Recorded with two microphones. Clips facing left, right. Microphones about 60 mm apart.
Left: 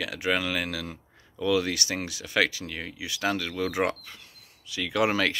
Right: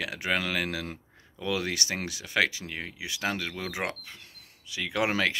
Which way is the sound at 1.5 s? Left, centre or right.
Right.